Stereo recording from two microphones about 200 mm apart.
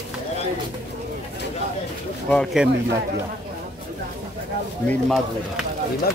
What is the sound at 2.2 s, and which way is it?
Speech, 5° left (ahead or behind).